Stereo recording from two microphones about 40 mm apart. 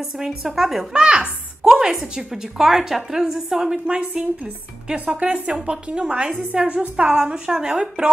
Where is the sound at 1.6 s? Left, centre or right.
Centre.